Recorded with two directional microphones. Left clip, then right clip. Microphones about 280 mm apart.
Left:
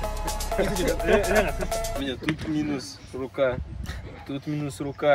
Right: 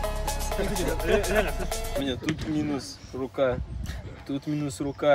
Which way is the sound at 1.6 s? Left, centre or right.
Centre.